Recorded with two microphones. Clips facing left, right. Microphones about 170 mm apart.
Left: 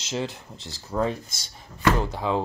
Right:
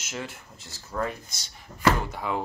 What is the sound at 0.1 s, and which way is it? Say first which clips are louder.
Speech: left 7 dB; 30° left (ahead or behind).